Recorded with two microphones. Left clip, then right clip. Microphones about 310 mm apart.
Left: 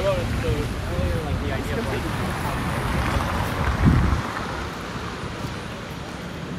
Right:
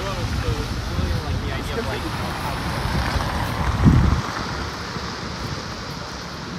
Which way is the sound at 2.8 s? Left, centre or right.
Right.